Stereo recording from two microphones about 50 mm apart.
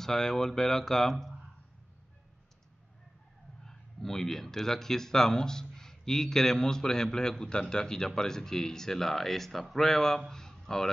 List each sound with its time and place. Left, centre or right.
0.0 s speech: centre
3.6 s speech: centre